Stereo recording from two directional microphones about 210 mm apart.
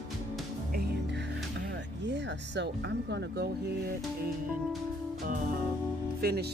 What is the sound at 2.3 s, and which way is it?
Speech, 55° right (ahead or behind).